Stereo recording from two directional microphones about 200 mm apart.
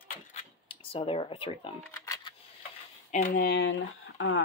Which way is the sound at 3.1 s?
40° left (ahead or behind).